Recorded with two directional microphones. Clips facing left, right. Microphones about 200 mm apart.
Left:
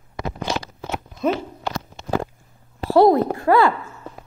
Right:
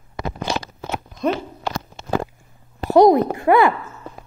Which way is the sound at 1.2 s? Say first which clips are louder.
Even; 5° left (ahead or behind).